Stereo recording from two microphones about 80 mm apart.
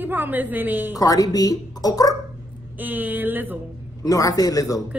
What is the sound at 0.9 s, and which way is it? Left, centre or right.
Speech, left.